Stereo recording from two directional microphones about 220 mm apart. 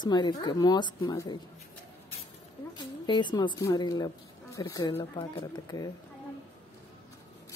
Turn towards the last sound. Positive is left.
turn(degrees=20)  # may be behind; listen again after turning